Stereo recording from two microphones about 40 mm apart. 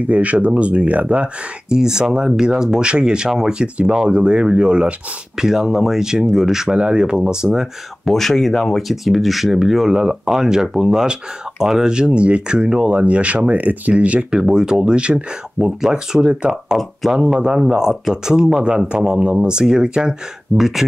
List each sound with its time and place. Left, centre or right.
0.0 s speech: right
1.7 s speech: centre
5.4 s speech: centre
6.8 s speech: right
8.0 s speech: centre; by 12.8 s right
12.8 s speech: right
14.3 s speech: centre
15.0 s speech: right; by 20.8 s centre